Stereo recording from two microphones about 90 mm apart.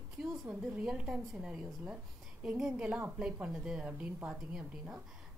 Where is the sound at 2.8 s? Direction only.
20° right (ahead or behind).